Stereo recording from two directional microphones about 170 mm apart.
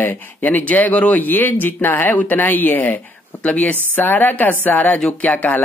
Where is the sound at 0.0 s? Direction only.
10° left (ahead or behind).